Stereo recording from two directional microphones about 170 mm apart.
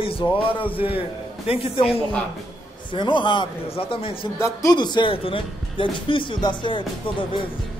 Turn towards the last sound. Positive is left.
turn(degrees=30)  # may be behind; listen again after turning